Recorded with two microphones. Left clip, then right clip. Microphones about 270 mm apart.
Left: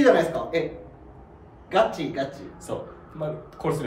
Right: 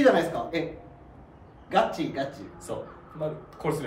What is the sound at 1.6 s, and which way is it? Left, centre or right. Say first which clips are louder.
Speech: left 3 dB; centre.